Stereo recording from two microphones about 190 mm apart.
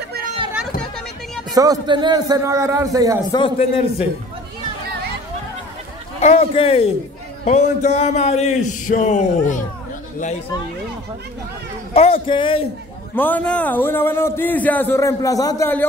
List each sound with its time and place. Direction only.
1.5 s a man's voice: 20° right (ahead or behind)
3.3 s a man's voice: 25° left (ahead or behind)
6.2 s a man's voice: 30° left (ahead or behind)
11.9 s a man's voice: 30° left (ahead or behind)
13.1 s a man's voice: 10° left (ahead or behind)